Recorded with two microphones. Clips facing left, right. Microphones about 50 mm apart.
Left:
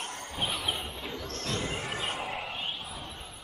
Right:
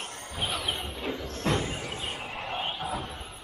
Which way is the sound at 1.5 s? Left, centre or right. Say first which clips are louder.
Right 8 dB; right.